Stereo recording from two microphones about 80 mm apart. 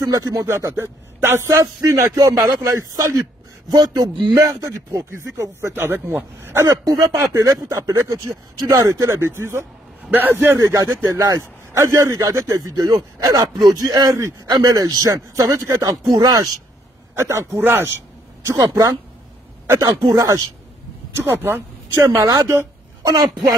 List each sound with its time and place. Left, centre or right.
0.0 s speech: right
3.7 s speech: right
4.4 s speech: right
6.8 s a man's voice: right
10.6 s speech: right
14.1 s speech: right
14.5 s speech: right
15.1 s speech: right
16.1 s speech: right
17.1 s speech: right
19.8 s speech: right
21.2 s speech: right